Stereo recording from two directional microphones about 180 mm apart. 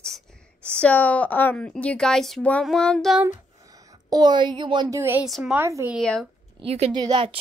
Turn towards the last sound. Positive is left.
turn(degrees=-30)  # may be behind; listen again after turning